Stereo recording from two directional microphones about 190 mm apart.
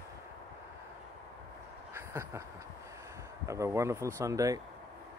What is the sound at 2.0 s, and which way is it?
Vehicle, 15° right (ahead or behind).